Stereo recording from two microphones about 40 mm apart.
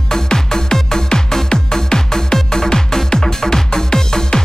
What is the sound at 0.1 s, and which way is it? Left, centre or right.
Music, centre.